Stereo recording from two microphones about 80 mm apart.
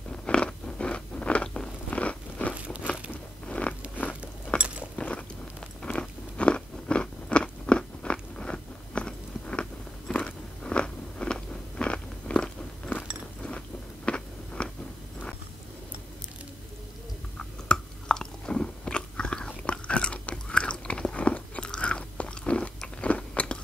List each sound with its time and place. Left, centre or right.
0.1 s crunch: centre
2.5 s crumpling: centre
2.9 s biting: centre
4.6 s a sound: centre
4.9 s biting: centre
17.4 s biting: centre